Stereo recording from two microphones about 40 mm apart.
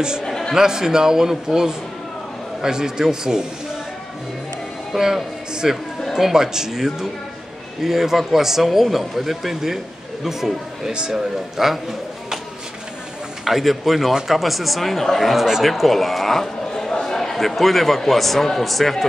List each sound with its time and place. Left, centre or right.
0.3 s a sound: centre
0.6 s speech: centre
4.9 s speech: centre
10.9 s speech: right
11.5 s speech: centre
13.4 s a man's voice: centre